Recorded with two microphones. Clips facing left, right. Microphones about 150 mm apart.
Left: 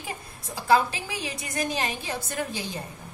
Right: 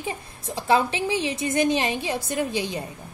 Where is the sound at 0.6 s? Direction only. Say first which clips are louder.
Right 1 dB; 20° right (ahead or behind).